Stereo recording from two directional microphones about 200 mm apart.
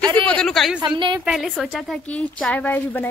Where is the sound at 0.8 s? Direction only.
25° right (ahead or behind).